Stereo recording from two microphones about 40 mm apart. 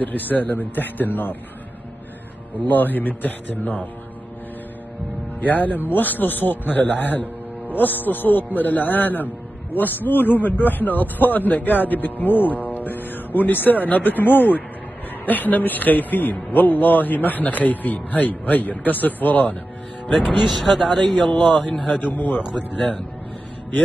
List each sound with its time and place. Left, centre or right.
0.0 s speech: left
2.6 s speech: left
5.4 s speech: left
20.3 s speech: centre
21.7 s a man's voice: left
22.0 s speech: left